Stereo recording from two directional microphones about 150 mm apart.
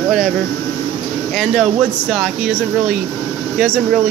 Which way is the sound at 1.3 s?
Centre (ahead or behind).